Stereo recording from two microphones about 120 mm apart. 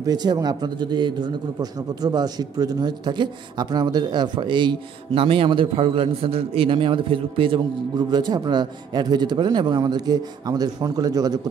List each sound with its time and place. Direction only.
0.0 s a man's voice: 35° right (ahead or behind)